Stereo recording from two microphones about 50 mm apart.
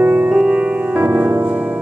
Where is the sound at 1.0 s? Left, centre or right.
Right.